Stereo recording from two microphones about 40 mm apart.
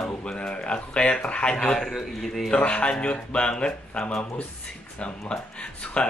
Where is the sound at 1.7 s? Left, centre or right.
Centre.